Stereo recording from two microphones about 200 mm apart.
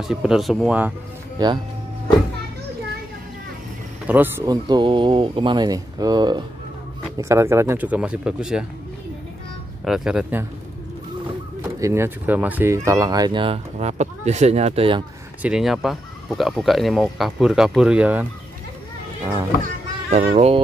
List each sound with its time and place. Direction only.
0.0 s speech: centre (ahead or behind)
1.4 s speech: 20° right (ahead or behind)
4.1 s speech: 10° right (ahead or behind)
9.8 s speech: 5° right (ahead or behind)
11.6 s speech: 15° right (ahead or behind)
15.4 s speech: 5° right (ahead or behind)
19.6 s music: 35° right (ahead or behind)